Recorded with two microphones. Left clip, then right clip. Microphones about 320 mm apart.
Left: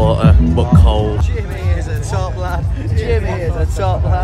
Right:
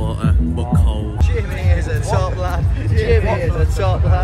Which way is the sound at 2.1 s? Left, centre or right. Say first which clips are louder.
Right 1 dB; left.